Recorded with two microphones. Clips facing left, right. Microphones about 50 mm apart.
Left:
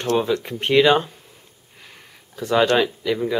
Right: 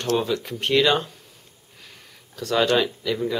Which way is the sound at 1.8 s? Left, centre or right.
Centre.